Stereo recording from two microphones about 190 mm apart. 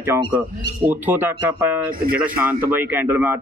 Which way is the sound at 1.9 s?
50° right (ahead or behind).